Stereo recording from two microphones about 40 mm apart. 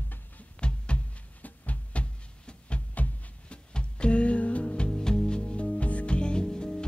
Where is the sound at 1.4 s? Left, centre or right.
Left.